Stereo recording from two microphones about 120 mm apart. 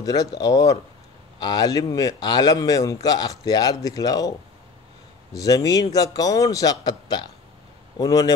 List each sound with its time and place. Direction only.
0.0 s a man's voice: 30° left (ahead or behind)